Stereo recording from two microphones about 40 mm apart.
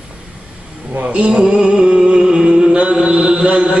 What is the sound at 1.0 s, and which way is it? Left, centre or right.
Music, right.